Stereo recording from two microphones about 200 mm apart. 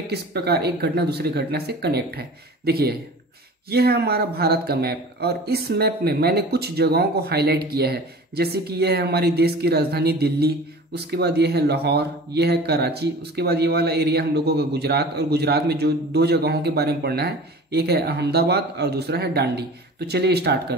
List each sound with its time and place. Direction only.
0.1 s speech: 55° right (ahead or behind)